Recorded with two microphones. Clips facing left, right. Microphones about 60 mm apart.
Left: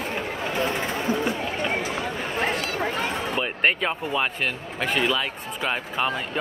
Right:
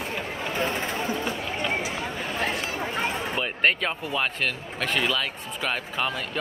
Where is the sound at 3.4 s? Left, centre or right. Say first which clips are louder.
Left 1 dB; centre.